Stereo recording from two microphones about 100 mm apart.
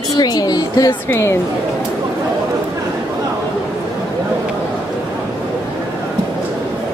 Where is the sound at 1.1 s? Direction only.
25° left (ahead or behind).